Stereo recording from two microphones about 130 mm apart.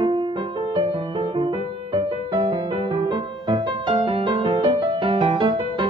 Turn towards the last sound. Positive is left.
turn(degrees=-40)  # may be behind; listen again after turning